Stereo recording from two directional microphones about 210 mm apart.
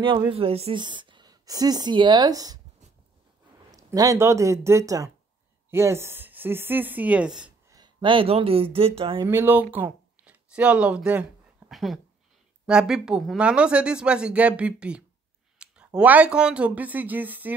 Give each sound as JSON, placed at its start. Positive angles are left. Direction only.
{"t": 0.0, "sound": "speech", "side_deg": -20}
{"t": 3.7, "sound": "a woman's voice", "side_deg": -15}
{"t": 7.7, "sound": "speech", "side_deg": -20}
{"t": 9.3, "sound": "a woman's voice", "side_deg": -10}